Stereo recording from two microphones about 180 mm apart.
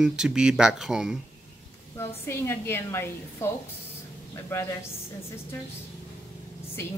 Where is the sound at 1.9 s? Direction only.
15° left (ahead or behind).